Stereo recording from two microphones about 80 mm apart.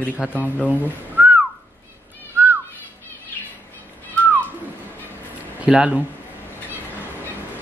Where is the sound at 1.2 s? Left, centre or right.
Right.